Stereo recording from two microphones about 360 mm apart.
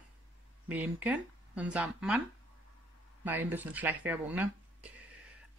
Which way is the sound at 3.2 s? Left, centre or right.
Centre.